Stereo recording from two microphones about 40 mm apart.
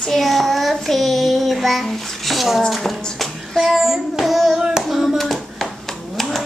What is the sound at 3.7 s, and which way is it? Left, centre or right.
Child singing, centre.